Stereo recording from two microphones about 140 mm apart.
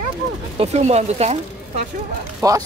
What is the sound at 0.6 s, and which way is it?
Speech, 50° right (ahead or behind).